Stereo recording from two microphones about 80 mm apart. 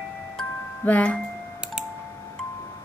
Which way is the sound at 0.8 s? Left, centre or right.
Centre.